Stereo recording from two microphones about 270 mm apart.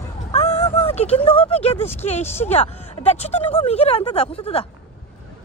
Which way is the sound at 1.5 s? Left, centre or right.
Left.